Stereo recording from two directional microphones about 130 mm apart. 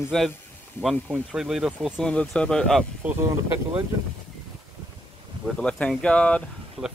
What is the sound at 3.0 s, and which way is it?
Speech, 10° right (ahead or behind).